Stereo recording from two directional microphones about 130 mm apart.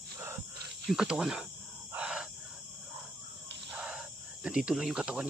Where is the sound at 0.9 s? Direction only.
5° right (ahead or behind).